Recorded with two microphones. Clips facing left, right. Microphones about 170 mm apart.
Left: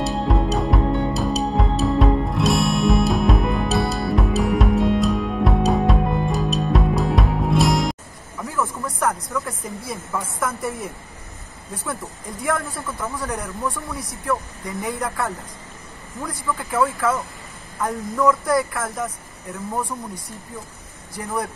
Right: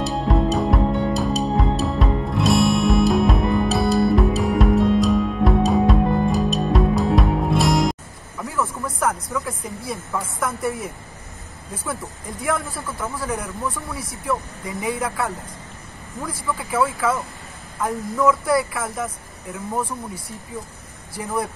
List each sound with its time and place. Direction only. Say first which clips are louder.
0.0 s music: right 1 dB; centre (ahead or behind)
10.6 s speech: right 2 dB; centre (ahead or behind)